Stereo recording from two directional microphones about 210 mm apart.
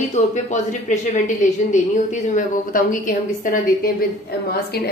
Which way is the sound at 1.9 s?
35° left (ahead or behind).